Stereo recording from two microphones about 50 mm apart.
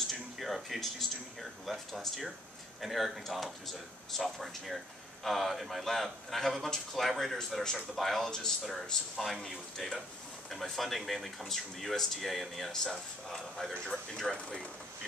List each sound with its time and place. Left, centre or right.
0.1 s a man's voice: centre
14.3 s speech: centre